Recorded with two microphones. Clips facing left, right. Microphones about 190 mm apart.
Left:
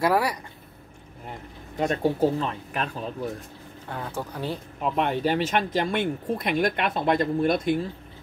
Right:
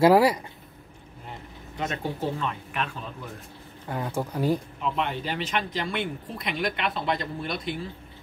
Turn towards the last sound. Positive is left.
turn(degrees=50)  # may be behind; listen again after turning